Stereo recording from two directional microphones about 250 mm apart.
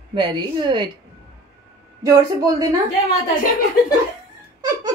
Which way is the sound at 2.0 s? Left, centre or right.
Centre.